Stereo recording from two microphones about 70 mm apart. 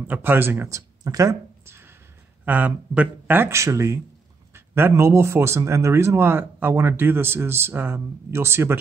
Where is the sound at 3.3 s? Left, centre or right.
Right.